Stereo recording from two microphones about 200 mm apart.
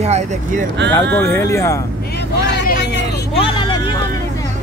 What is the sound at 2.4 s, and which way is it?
Vehicle, 60° left (ahead or behind).